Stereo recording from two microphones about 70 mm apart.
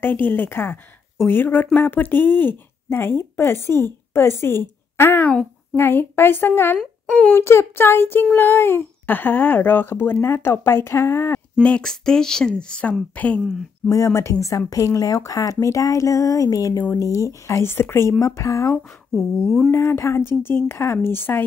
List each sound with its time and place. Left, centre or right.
0.0 s speech: left
7.1 s speech: centre
7.3 s speech: left
11.8 s speech: centre
13.8 s speech: left
16.9 s speech: left
17.6 s speech: left
18.2 s speech: left
19.1 s speech: centre
19.7 s speech: left